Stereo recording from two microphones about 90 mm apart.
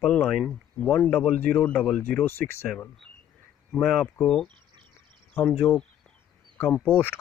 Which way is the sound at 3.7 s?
10° left (ahead or behind).